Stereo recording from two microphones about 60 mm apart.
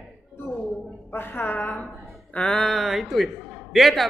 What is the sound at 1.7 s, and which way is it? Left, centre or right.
Speech, centre.